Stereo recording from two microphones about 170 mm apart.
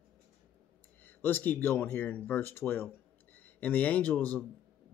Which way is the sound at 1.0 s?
10° left (ahead or behind).